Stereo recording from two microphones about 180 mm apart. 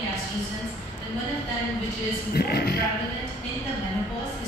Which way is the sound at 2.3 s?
60° left (ahead or behind).